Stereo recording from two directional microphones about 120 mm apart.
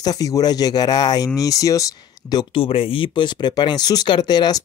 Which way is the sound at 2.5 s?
50° left (ahead or behind).